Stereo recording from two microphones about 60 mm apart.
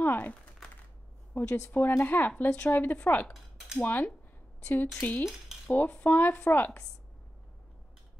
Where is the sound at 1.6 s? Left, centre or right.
Left.